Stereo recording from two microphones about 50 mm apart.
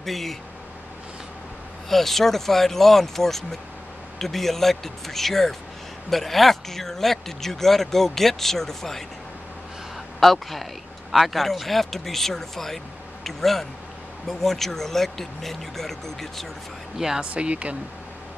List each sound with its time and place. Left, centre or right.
0.0 s speech: centre
1.9 s speech: centre
10.2 s speech: centre
17.2 s speech: right